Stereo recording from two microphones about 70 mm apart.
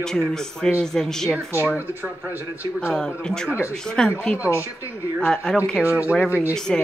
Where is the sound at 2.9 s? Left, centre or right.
Centre.